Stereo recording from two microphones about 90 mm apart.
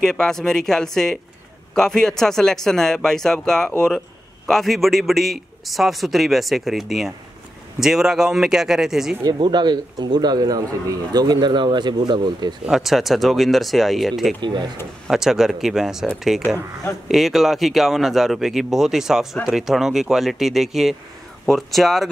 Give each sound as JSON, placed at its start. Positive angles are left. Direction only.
{"t": 0.0, "sound": "a man's voice", "side_deg": 5}
{"t": 9.4, "sound": "speech", "side_deg": -55}
{"t": 12.6, "sound": "a man's voice", "side_deg": -5}
{"t": 14.4, "sound": "speech", "side_deg": -60}
{"t": 15.0, "sound": "a man's voice", "side_deg": -5}
{"t": 17.1, "sound": "a man's voice", "side_deg": 0}